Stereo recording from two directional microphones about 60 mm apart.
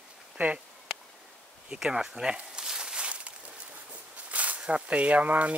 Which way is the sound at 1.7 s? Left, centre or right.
Centre.